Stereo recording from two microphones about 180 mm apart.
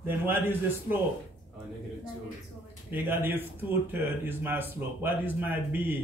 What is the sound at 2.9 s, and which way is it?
A man's voice, 10° right (ahead or behind).